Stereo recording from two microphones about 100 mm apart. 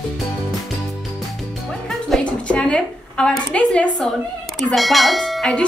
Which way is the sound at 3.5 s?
10° left (ahead or behind).